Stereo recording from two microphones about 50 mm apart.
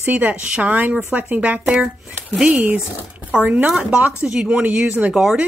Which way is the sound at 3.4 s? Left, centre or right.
Right.